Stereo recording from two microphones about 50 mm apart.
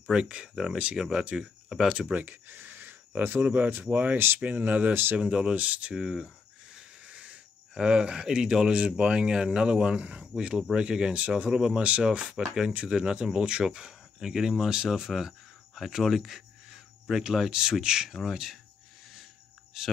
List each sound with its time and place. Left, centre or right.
0.1 s speech: right
2.1 s speech: right
5.1 s speech: right
5.9 s a sound: centre
7.7 s speech: centre
18.1 s speech: centre
19.7 s speech: centre